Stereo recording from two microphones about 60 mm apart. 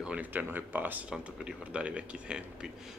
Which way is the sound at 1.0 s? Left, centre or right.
Centre.